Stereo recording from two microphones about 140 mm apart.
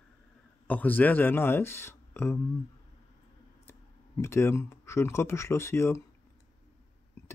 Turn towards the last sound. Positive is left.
turn(degrees=15)  # may be behind; listen again after turning